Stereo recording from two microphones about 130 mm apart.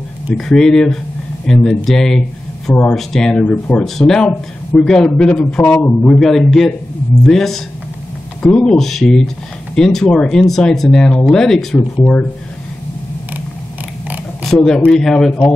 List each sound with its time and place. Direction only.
0.3 s a man's voice: 5° left (ahead or behind)
6.1 s a man's voice: centre (ahead or behind)
14.4 s speech: 5° left (ahead or behind)